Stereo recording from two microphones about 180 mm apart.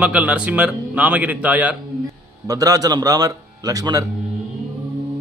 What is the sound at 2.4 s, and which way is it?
A man's voice, 20° right (ahead or behind).